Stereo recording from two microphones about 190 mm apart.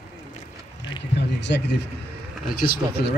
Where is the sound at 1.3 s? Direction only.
65° left (ahead or behind).